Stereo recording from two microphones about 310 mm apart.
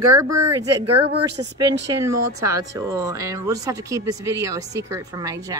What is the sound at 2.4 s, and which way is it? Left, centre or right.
Speech, centre.